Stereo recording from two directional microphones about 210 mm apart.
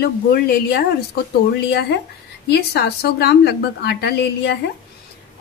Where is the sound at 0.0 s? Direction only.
50° left (ahead or behind).